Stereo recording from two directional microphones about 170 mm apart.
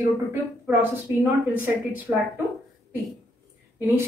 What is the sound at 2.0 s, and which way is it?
Speech, 15° right (ahead or behind).